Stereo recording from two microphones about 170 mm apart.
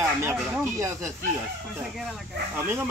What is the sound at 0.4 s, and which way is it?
Speech, 10° right (ahead or behind).